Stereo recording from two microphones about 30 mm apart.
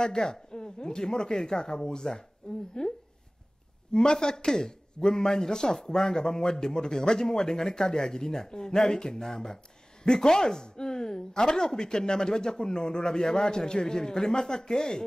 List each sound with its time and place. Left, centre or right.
0.0 s speech: centre
3.9 s speech: left